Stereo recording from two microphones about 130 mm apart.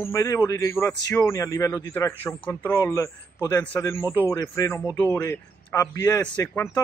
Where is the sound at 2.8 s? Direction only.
25° left (ahead or behind).